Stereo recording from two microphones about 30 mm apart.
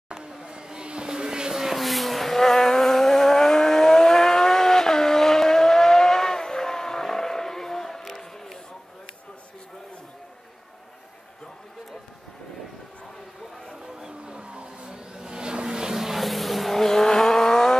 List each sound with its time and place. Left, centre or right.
0.1 s a sound: right
1.5 s vehicle: centre
8.0 s a sound: centre
14.2 s vehicle: right; by 16.2 s centre
16.2 s vehicle: centre
16.7 s vehicle: centre